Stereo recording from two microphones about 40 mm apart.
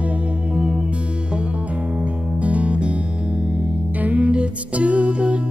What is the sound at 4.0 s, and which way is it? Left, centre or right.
Music, right.